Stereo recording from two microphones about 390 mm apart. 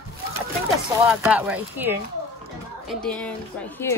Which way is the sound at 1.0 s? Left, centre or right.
Centre.